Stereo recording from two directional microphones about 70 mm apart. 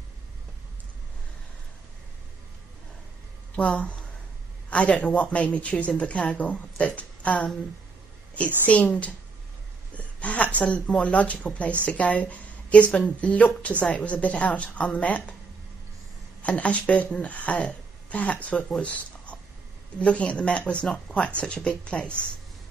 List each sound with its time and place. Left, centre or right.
3.6 s speech: centre
8.6 s a woman's voice: centre
16.4 s speech: centre